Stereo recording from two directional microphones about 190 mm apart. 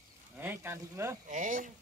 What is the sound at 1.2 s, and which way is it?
Speech, 45° right (ahead or behind).